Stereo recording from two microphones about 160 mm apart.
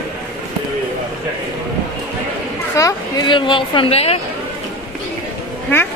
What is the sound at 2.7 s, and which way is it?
A woman's voice, 20° left (ahead or behind).